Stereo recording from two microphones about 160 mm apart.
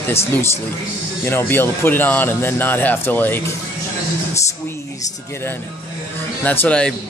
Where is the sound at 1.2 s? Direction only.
15° left (ahead or behind).